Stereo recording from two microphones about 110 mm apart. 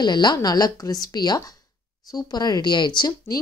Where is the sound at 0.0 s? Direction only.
40° left (ahead or behind).